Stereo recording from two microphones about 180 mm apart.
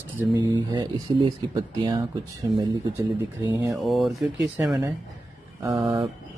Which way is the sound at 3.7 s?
Centre (ahead or behind).